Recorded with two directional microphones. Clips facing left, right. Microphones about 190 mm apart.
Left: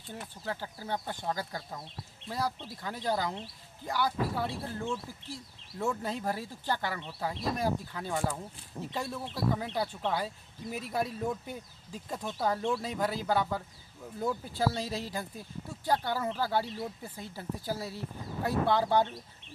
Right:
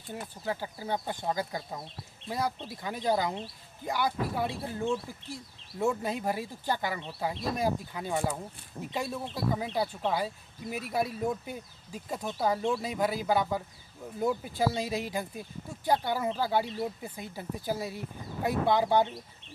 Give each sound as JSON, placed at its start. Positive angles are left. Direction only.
{"t": 0.1, "sound": "speech", "side_deg": -10}